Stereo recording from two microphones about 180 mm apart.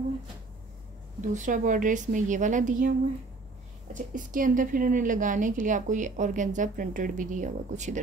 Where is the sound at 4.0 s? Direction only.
50° right (ahead or behind).